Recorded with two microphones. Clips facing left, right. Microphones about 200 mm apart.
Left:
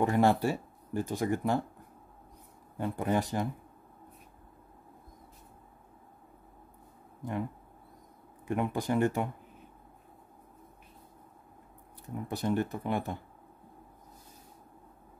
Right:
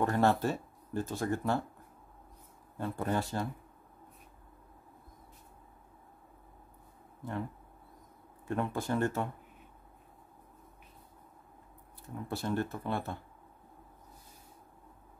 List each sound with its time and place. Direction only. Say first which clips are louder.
0.0 s speech: left 2 dB; 15° left (ahead or behind)
2.8 s speech: left 3 dB; 15° left (ahead or behind)
7.2 s speech: left 3 dB; 15° left (ahead or behind)
8.5 s speech: left 3 dB; 15° left (ahead or behind)
12.3 s speech: left 3 dB; 15° left (ahead or behind)